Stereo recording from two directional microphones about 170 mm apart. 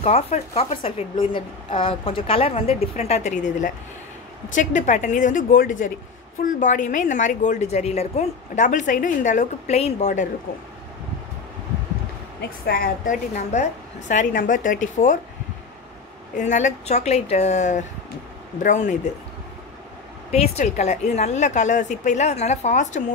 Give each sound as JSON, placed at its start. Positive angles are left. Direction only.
{"t": 0.0, "sound": "a woman's voice", "side_deg": 40}
{"t": 12.4, "sound": "a woman's voice", "side_deg": 60}
{"t": 16.3, "sound": "a woman's voice", "side_deg": 45}
{"t": 20.2, "sound": "a woman's voice", "side_deg": 40}